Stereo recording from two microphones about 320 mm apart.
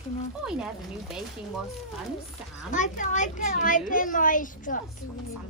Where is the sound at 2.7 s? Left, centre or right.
Left.